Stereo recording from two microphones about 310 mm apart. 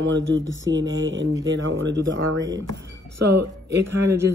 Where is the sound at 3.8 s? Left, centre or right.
Right.